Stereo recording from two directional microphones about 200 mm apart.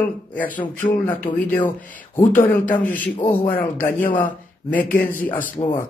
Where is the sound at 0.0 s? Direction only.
10° left (ahead or behind).